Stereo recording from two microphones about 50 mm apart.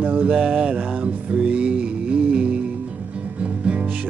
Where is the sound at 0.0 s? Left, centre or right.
Right.